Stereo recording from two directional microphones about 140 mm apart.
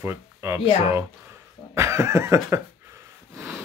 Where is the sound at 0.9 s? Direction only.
15° right (ahead or behind).